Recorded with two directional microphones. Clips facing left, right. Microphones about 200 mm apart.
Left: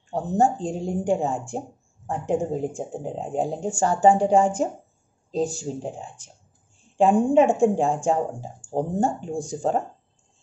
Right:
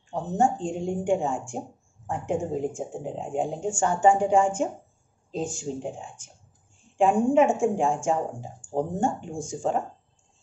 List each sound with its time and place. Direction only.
0.1 s speech: 35° left (ahead or behind)